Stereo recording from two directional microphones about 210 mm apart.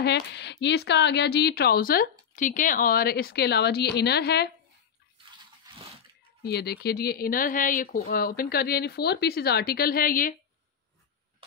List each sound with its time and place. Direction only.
0.0 s speech: 55° left (ahead or behind)
6.4 s speech: 50° left (ahead or behind)